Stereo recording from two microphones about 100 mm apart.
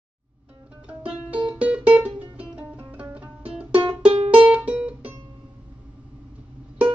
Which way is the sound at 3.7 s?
65° right (ahead or behind).